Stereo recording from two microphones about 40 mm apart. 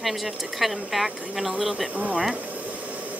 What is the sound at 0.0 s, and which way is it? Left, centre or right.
Speech, centre.